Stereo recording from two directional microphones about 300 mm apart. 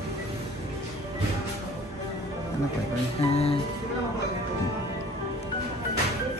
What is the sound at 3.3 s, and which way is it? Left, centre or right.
Speech, centre.